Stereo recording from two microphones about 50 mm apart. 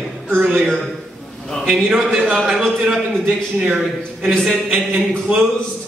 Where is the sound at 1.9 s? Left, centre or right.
Centre.